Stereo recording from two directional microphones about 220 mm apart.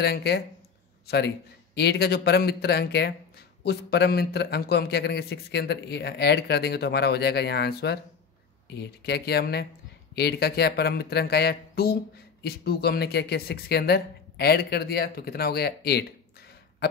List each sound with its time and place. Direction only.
0.0 s a man's voice: 45° left (ahead or behind)